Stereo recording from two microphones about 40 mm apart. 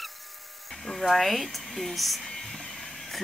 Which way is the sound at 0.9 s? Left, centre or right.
Centre.